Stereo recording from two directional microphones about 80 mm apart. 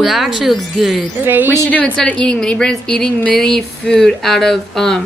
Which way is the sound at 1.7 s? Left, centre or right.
Centre.